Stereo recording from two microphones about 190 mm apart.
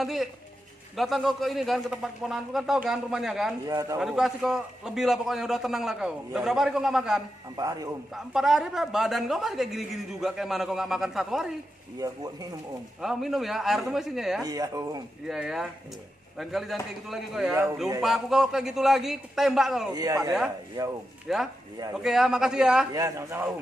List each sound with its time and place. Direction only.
0.0 s a woman's voice: centre (ahead or behind)
3.6 s speech: 20° right (ahead or behind)
4.0 s a woman's voice: centre (ahead or behind)
7.5 s speech: 20° right (ahead or behind)
8.1 s a woman's voice: centre (ahead or behind)
12.0 s speech: 20° right (ahead or behind)
13.0 s a woman's voice: centre (ahead or behind)
14.4 s speech: 20° right (ahead or behind)
15.2 s a woman's voice: centre (ahead or behind)
19.9 s speech: 20° right (ahead or behind)
21.3 s a woman's voice: centre (ahead or behind)
22.9 s speech: 15° right (ahead or behind)